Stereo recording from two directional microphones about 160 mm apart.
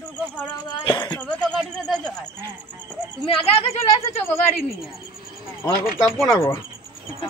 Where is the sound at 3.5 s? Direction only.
40° left (ahead or behind).